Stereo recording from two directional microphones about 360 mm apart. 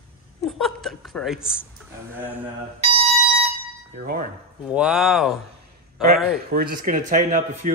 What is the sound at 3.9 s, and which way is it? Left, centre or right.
Speech, right.